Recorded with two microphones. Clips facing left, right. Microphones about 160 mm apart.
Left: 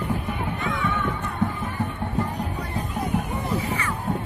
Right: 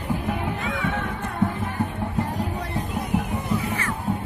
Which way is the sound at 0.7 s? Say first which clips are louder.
Left 2 dB; 90° right.